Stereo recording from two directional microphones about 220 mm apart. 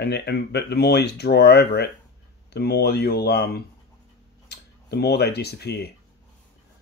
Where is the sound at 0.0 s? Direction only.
50° left (ahead or behind).